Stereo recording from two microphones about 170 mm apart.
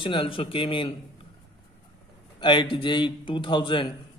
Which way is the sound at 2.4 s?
25° left (ahead or behind).